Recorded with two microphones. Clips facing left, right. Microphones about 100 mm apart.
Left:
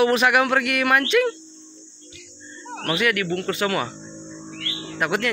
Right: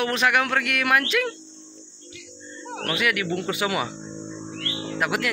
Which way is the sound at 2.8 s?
Centre (ahead or behind).